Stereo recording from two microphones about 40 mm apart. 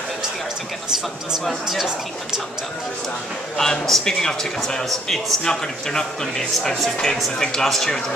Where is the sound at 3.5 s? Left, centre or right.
Centre.